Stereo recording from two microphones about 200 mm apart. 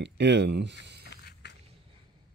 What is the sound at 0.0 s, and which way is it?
Speech, 60° right (ahead or behind).